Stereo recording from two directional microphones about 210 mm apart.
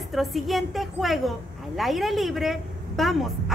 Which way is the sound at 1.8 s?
Centre (ahead or behind).